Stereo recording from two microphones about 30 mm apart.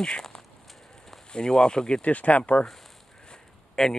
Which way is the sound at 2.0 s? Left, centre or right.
Left.